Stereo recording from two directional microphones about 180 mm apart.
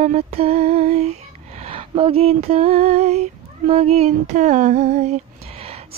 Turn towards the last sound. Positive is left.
turn(degrees=-40)  # may be behind; listen again after turning